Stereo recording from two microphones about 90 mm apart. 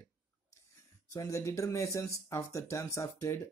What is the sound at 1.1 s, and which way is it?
Speech, 35° left (ahead or behind).